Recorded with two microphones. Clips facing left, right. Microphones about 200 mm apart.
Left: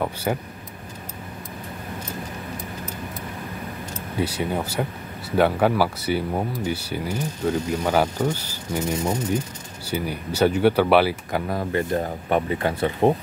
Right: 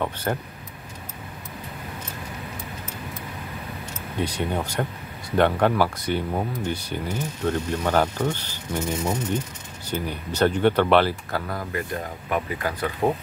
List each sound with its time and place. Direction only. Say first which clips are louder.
0.0 s speech: left 2 dB; 10° left (ahead or behind)
4.2 s speech: left 1 dB; 5° left (ahead or behind)
9.8 s speech: left 2 dB; 10° left (ahead or behind)
11.4 s speech: left 5 dB; 25° left (ahead or behind)